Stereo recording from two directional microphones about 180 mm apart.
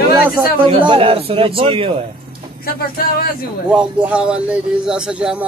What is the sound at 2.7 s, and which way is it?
Speech, 55° left (ahead or behind).